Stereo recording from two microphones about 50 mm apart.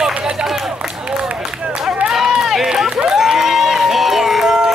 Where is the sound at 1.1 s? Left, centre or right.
Centre.